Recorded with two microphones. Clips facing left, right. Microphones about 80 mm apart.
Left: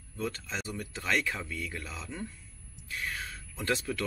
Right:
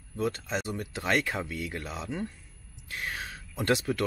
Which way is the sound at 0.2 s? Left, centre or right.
Centre.